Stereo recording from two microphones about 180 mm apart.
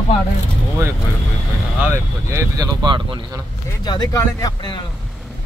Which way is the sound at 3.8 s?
20° left (ahead or behind).